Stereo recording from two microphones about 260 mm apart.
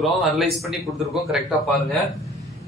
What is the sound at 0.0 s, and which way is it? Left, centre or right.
A man's voice, centre.